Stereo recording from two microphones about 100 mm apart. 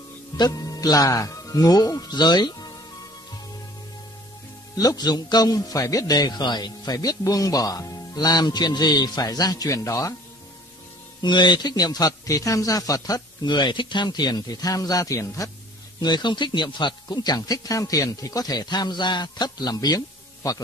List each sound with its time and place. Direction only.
0.4 s speech: 35° left (ahead or behind)
4.7 s a man's voice: 40° left (ahead or behind)
11.2 s a man's voice: 50° left (ahead or behind); by 15.5 s 35° left (ahead or behind)
16.0 s speech: 45° left (ahead or behind)